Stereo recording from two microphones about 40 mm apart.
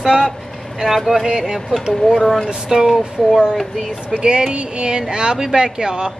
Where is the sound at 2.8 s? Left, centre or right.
Centre.